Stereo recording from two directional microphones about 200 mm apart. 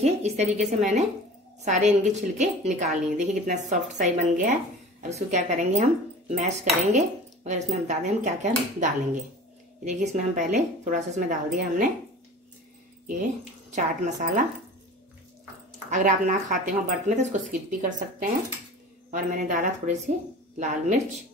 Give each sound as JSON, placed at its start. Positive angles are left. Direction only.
{"t": 0.0, "sound": "speech", "side_deg": -35}
{"t": 9.8, "sound": "speech", "side_deg": -40}
{"t": 13.0, "sound": "speech", "side_deg": -40}
{"t": 15.9, "sound": "speech", "side_deg": -40}